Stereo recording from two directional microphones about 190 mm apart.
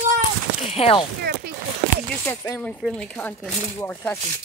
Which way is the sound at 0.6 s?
30° left (ahead or behind).